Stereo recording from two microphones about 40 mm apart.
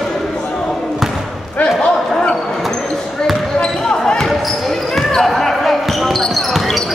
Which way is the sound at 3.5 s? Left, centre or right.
Left.